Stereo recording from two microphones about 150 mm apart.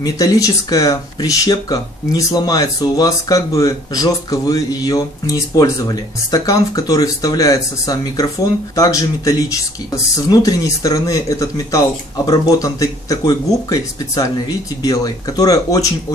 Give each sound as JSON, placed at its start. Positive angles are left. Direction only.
{"t": 0.0, "sound": "speech", "side_deg": 25}